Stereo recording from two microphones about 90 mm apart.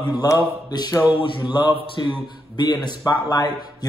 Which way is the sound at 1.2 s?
65° left (ahead or behind).